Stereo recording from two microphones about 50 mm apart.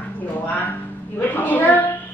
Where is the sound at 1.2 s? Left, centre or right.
Left.